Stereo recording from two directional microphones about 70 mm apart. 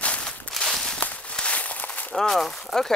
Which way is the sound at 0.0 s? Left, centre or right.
Centre.